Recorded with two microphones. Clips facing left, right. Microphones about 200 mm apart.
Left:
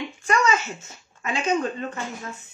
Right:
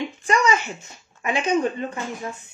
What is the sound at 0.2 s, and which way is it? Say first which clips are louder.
Speech: right 1 dB; 15° right (ahead or behind).